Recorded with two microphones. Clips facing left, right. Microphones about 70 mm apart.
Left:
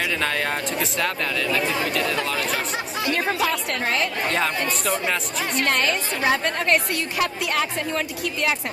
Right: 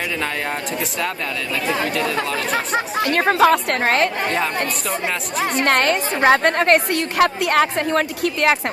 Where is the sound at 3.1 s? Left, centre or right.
Right.